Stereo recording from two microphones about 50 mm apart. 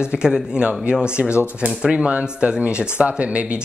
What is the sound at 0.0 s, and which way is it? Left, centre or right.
Speech, centre.